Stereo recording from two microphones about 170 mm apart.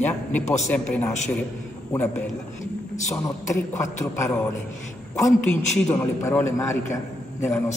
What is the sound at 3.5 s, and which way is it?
Speech, 15° left (ahead or behind).